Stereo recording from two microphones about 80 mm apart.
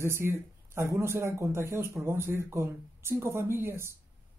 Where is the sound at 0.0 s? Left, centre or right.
Right.